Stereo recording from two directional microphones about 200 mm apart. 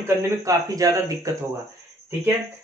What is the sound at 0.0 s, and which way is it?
Speech, 15° right (ahead or behind).